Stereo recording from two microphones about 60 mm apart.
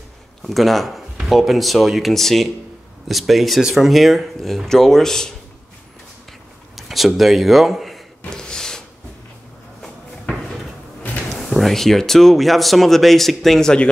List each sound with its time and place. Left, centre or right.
0.4 s speech: centre
6.7 s a sound: centre
7.2 s speech: centre
8.3 s gasp: centre
9.8 s cupboard open or close: centre
11.0 s a sound: left
11.2 s speech: centre